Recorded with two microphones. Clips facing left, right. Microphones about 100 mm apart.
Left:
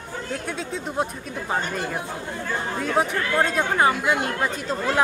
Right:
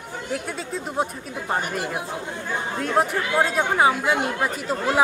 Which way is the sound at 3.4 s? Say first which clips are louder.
Right 1 dB; 5° right (ahead or behind).